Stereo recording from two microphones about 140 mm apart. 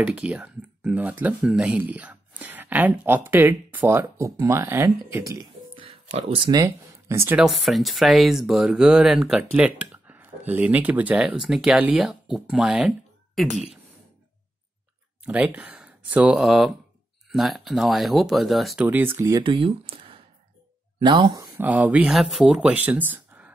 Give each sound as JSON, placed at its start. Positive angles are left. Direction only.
{"t": 0.0, "sound": "speech", "side_deg": -10}
{"t": 5.8, "sound": "a sound", "side_deg": -45}
{"t": 6.6, "sound": "speech", "side_deg": -20}
{"t": 7.3, "sound": "speech", "side_deg": 0}
{"t": 15.2, "sound": "speech", "side_deg": -10}
{"t": 18.9, "sound": "speech", "side_deg": -15}
{"t": 19.4, "sound": "speech", "side_deg": -40}
{"t": 21.5, "sound": "speech", "side_deg": -10}